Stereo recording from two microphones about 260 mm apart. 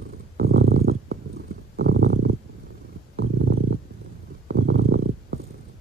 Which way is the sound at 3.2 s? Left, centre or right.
Right.